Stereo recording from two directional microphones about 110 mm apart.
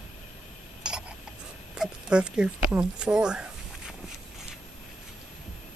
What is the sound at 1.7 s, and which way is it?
Speech, 10° right (ahead or behind).